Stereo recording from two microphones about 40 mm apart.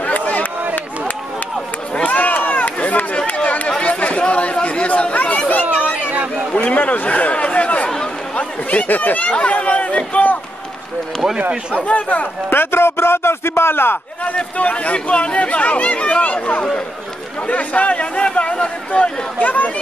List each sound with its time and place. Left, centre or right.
0.0 s a sound: left
2.1 s run: left
3.4 s chatter: left
5.5 s chatter: left
6.5 s speech: left
7.4 s chatter: left
8.8 s speech: left
9.3 s speech: left
11.7 s speech: left
12.4 s a man's voice: left
14.3 s speech: left
17.5 s speech: left